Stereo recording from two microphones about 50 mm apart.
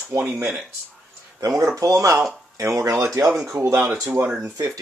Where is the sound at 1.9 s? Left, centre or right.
Right.